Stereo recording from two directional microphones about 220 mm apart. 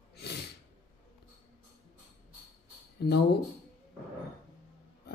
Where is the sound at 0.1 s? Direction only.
50° left (ahead or behind).